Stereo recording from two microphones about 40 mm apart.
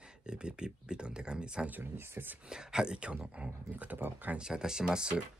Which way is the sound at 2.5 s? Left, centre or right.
Centre.